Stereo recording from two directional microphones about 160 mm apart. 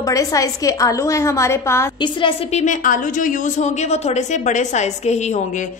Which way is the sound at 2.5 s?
50° left (ahead or behind).